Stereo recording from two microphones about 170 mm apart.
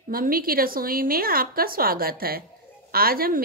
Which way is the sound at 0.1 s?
60° right (ahead or behind).